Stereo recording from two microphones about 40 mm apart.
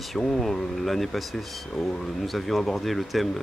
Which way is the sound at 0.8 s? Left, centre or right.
Centre.